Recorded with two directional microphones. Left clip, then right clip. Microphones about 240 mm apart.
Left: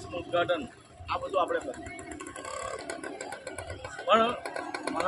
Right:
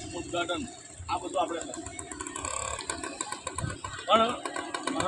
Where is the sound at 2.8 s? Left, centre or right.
Right.